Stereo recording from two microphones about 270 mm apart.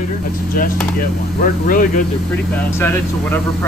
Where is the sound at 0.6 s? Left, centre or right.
Left.